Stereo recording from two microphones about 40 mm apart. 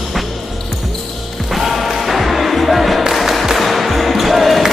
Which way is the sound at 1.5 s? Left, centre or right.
Centre.